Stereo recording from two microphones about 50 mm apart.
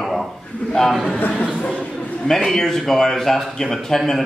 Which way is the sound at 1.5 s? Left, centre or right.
Left.